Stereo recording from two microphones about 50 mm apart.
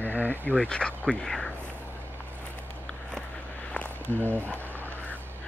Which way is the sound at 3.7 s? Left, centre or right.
Left.